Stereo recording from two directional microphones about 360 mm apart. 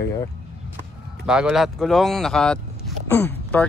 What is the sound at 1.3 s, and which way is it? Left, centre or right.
Speech, centre.